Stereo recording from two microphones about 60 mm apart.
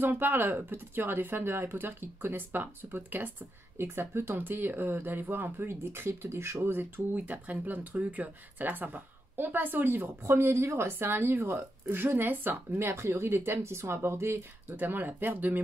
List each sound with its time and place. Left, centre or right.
0.0 s speech: right
3.7 s speech: right